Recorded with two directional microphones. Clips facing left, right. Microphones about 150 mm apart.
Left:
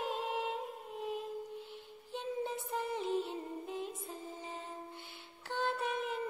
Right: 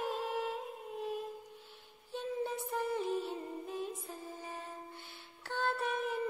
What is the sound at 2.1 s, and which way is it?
Music, 20° left (ahead or behind).